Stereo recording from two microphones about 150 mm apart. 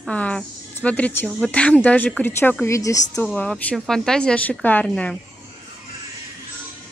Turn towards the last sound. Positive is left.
turn(degrees=10)  # may be behind; listen again after turning